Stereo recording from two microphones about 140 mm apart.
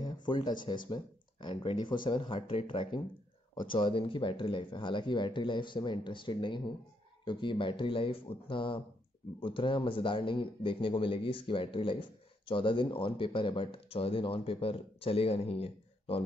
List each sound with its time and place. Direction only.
0.0 s a man's voice: 35° left (ahead or behind)